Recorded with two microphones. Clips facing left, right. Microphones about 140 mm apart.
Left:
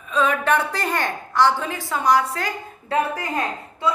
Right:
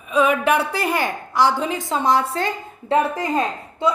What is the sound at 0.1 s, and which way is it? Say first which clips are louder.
A child's voice: right 3 dB; 10° right (ahead or behind).